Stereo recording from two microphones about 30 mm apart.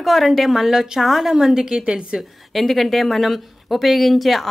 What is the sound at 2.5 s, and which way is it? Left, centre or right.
Speech, centre.